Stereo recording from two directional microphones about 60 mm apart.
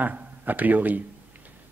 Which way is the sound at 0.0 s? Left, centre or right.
Right.